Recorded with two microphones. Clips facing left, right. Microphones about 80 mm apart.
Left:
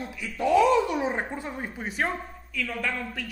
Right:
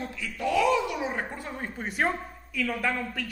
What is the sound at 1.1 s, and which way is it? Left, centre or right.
Speech, left.